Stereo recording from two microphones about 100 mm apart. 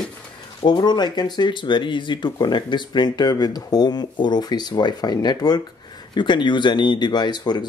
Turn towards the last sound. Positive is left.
turn(degrees=45)  # may be behind; listen again after turning